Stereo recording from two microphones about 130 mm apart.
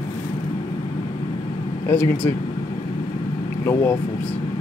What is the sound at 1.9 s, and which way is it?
Speech, 15° left (ahead or behind).